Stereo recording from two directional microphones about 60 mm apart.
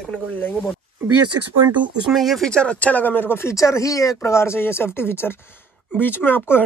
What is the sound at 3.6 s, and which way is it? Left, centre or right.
Speech, left.